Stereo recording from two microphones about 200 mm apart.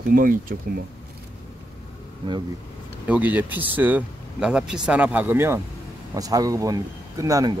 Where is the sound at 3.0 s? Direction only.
10° right (ahead or behind).